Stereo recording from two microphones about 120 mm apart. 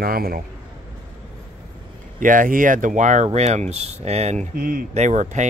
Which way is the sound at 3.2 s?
65° right (ahead or behind).